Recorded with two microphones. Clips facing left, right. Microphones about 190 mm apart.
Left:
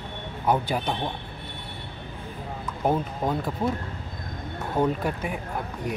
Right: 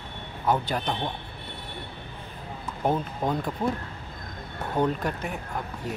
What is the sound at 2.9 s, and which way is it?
Speech, 5° left (ahead or behind).